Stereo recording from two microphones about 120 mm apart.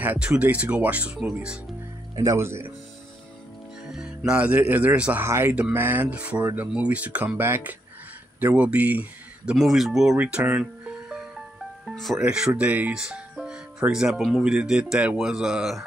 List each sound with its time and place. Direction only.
0.0 s speech: 10° right (ahead or behind)
2.1 s speech: 25° right (ahead or behind)
3.9 s speech: 5° right (ahead or behind)
9.5 s speech: centre (ahead or behind)
10.1 s speech: 15° right (ahead or behind)
11.8 s speech: centre (ahead or behind)